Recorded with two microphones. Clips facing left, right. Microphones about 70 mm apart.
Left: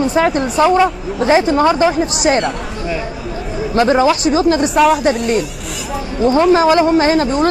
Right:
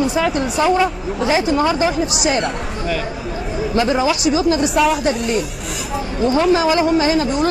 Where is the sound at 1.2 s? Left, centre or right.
Left.